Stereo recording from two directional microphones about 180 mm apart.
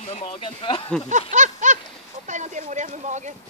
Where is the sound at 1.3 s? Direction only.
45° right (ahead or behind).